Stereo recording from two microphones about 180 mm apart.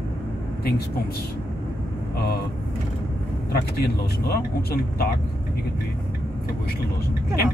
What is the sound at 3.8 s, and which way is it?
Speech, 60° left (ahead or behind).